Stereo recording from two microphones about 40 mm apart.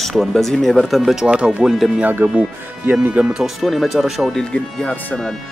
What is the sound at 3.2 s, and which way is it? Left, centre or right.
Speech, right.